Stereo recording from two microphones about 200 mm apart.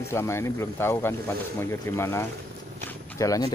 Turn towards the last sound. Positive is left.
turn(degrees=15)  # may be behind; listen again after turning